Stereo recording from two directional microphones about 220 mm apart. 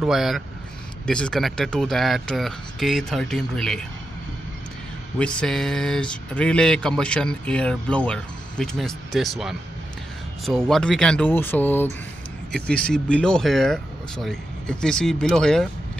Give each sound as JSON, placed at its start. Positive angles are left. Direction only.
{"t": 0.0, "sound": "speech", "side_deg": 0}
{"t": 5.2, "sound": "speech", "side_deg": 5}